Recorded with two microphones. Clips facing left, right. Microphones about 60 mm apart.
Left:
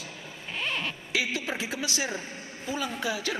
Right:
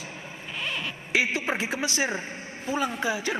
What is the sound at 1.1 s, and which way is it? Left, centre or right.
A man's voice, right.